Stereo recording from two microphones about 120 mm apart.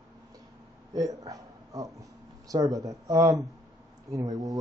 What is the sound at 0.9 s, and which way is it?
Speech, 30° right (ahead or behind).